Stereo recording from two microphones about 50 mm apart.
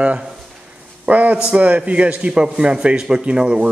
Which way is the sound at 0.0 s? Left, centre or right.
Right.